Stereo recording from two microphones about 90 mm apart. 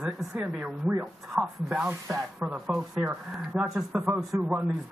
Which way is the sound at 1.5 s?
Centre (ahead or behind).